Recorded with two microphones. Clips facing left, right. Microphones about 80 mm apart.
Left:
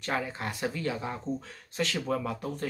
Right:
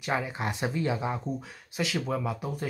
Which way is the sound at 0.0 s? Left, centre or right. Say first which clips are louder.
Right 2 dB; centre.